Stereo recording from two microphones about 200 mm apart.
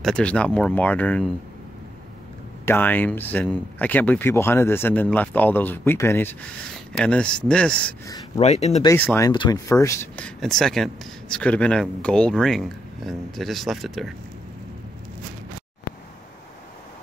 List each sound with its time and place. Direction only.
0.0 s speech: 5° left (ahead or behind)
2.6 s speech: 10° left (ahead or behind)
8.4 s speech: 35° left (ahead or behind)
8.8 s speech: 10° left (ahead or behind)